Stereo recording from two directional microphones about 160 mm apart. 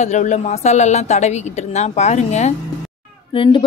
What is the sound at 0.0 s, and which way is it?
A woman's voice, 45° left (ahead or behind).